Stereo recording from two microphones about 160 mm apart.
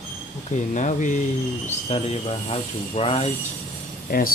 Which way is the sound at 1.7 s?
40° left (ahead or behind).